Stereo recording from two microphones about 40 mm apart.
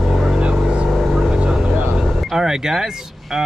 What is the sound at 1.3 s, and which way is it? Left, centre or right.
Vehicle, right.